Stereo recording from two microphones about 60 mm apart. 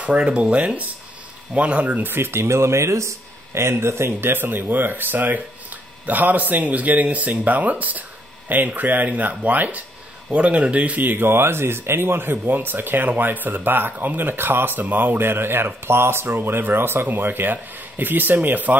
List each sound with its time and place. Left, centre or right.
0.0 s speech: centre
2.1 s speech: right
11.0 s speech: right